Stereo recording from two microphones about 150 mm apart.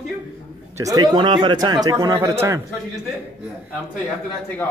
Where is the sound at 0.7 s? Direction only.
25° right (ahead or behind).